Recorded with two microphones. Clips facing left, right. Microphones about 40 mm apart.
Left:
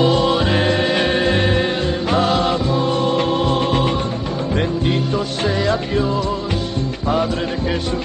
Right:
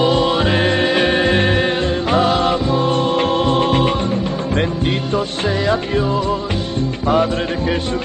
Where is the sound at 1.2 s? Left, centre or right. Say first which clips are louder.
Right 2 dB; right.